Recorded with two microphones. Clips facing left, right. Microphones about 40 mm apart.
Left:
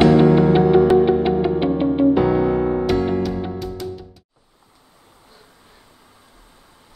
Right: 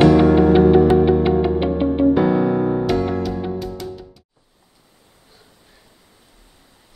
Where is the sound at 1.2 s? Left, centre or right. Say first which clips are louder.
Right 1 dB; centre.